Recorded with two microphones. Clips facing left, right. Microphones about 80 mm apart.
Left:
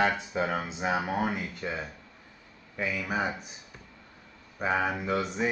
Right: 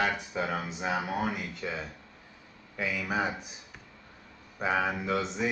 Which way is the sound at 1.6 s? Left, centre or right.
Centre.